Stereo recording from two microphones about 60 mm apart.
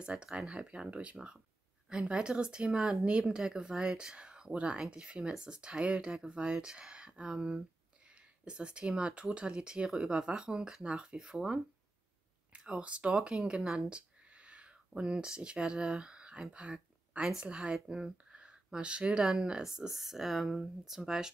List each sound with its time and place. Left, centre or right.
0.0 s speech: centre